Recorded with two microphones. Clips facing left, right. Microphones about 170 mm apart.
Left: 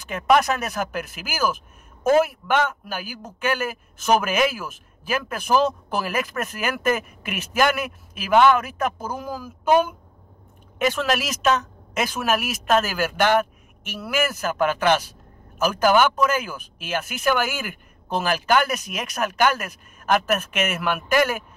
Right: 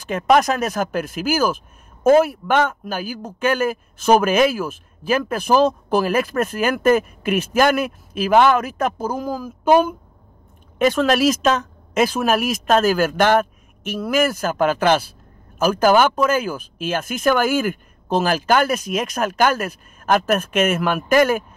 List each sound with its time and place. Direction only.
0.1 s speech: 40° right (ahead or behind)